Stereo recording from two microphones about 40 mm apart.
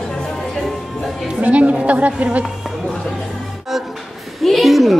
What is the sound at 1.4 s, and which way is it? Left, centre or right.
Chatter, right.